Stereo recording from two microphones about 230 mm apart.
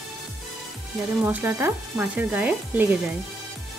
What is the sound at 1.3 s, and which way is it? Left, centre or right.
Speech, centre.